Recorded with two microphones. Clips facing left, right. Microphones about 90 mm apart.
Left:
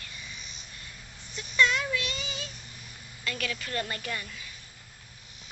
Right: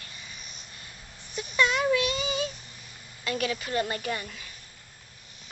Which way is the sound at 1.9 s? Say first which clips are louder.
Right 8 dB; 15° right (ahead or behind).